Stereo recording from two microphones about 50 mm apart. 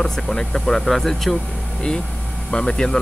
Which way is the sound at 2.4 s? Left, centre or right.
Centre.